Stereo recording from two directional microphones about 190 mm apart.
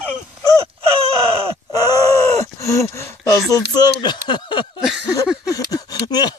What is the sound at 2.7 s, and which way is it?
Speech, 15° left (ahead or behind).